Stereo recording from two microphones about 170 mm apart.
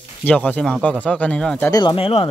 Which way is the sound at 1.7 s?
25° left (ahead or behind).